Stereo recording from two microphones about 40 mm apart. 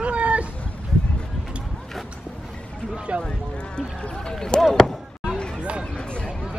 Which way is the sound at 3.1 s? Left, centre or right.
Right.